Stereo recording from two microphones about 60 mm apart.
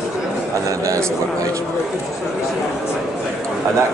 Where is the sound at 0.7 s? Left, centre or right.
Right.